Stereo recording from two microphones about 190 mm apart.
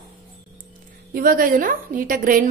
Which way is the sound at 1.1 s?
50° right (ahead or behind).